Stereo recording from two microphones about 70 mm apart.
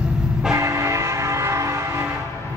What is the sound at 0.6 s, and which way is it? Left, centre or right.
Train, right.